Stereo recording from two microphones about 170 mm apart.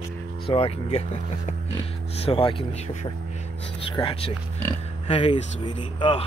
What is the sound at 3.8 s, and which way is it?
Speech, 30° left (ahead or behind).